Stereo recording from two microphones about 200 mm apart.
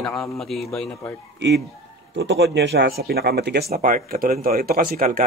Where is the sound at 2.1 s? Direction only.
65° right (ahead or behind); by 5.2 s 45° right (ahead or behind).